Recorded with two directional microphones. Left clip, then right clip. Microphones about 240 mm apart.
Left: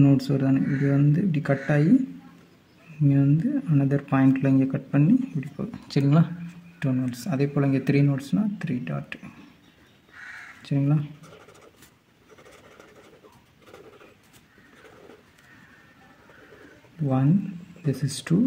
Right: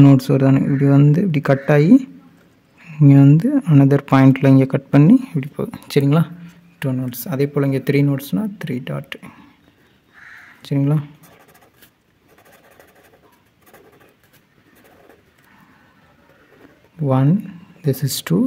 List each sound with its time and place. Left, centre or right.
0.0 s speech: right
3.0 s speech: right
10.6 s speech: right
17.8 s speech: right